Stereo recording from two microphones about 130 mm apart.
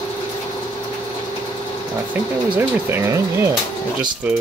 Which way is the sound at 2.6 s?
20° right (ahead or behind).